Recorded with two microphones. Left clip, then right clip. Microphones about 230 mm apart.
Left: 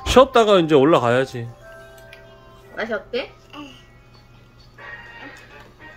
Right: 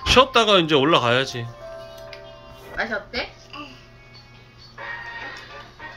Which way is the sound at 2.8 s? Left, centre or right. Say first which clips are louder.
Left 1 dB; left.